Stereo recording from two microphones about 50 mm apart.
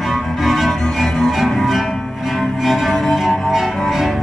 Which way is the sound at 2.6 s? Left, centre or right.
Centre.